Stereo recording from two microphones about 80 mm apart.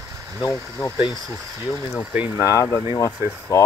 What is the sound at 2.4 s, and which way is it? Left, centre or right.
Speech, left.